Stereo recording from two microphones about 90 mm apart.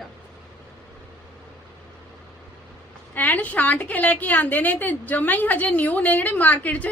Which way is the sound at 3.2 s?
20° left (ahead or behind).